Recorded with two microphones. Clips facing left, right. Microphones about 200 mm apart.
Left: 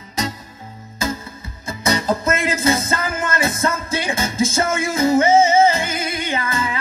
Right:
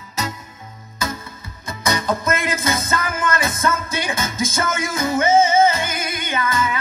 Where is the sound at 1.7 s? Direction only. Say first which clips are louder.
Left 2 dB; 30° left (ahead or behind).